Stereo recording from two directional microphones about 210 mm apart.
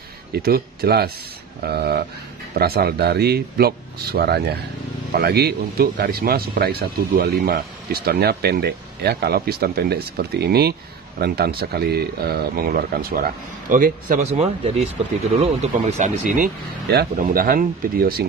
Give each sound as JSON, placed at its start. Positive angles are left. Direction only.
{"t": 0.3, "sound": "speech", "side_deg": -45}
{"t": 16.9, "sound": "speech", "side_deg": -45}